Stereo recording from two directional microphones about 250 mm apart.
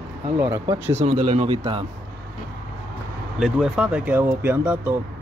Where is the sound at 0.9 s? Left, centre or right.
Right.